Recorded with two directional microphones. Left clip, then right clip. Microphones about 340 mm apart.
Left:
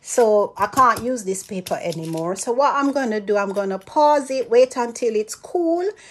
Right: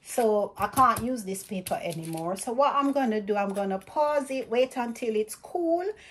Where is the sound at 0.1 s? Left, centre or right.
Centre.